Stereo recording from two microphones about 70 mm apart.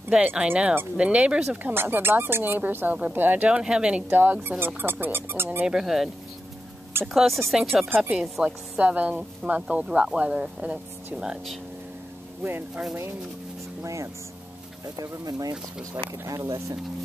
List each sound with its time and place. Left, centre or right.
0.1 s speech: centre
1.6 s speech: right; by 4.0 s centre
4.1 s speech: right
5.7 s speech: centre
7.2 s speech: centre
8.0 s speech: centre
8.5 s speech: right
12.4 s speech: right
13.8 s speech: right
15.0 s speech: right